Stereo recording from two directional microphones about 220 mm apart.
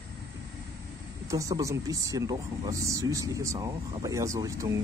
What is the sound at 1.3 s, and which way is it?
Speech, 15° right (ahead or behind).